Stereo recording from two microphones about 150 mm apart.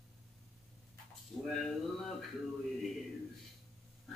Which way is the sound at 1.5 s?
Centre (ahead or behind).